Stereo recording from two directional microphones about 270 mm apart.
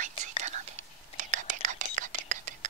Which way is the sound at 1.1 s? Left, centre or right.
Right.